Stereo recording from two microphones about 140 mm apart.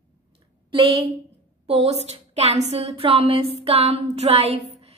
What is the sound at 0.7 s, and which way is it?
A woman's voice, 40° right (ahead or behind).